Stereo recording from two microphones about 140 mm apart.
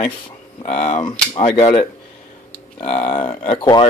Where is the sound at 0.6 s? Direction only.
55° left (ahead or behind).